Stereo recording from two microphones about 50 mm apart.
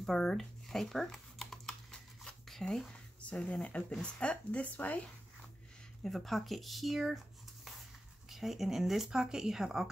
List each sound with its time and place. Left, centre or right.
0.0 s computer keyboard: centre
3.4 s speech: left
6.0 s speech: centre
8.3 s speech: centre